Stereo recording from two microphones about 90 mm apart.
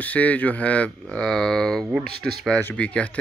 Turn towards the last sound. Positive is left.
turn(degrees=15)  # may be behind; listen again after turning